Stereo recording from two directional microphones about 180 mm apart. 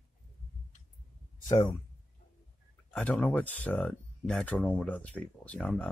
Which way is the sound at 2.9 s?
10° left (ahead or behind).